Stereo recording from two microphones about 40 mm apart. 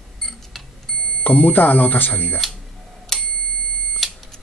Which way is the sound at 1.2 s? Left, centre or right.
Left.